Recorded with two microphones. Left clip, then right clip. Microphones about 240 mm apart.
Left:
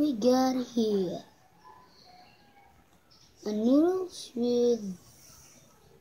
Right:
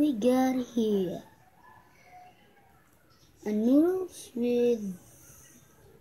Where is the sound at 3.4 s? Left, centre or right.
Centre.